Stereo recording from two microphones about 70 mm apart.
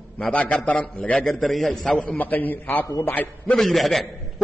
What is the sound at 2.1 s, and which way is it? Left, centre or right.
A man's voice, left.